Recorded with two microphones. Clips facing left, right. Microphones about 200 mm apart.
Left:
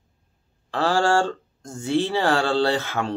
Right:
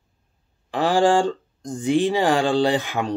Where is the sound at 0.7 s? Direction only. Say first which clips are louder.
Right 3 dB; 15° right (ahead or behind).